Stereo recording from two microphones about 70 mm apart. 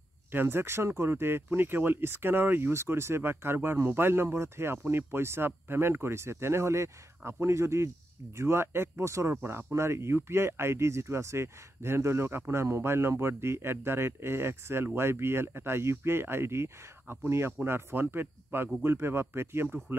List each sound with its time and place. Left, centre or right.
0.3 s speech: right
9.4 s speech: right